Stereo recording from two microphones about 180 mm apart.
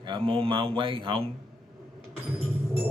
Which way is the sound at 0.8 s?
30° right (ahead or behind).